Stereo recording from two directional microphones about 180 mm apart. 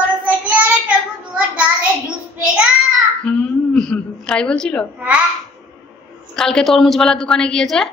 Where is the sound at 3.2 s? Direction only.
5° left (ahead or behind).